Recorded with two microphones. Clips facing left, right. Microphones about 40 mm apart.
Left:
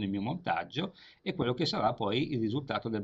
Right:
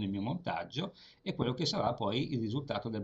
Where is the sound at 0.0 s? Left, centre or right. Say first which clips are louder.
Left 2 dB; left.